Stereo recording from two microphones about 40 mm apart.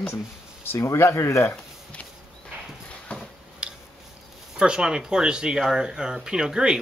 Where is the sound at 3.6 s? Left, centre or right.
Right.